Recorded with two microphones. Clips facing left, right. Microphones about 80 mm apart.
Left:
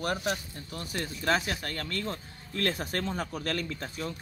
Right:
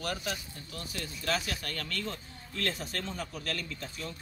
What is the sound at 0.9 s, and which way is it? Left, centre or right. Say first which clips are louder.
Speech: left 5 dB; left.